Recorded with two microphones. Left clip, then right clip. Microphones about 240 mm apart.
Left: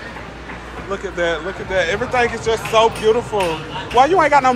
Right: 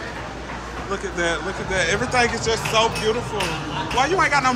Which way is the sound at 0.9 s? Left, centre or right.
Centre.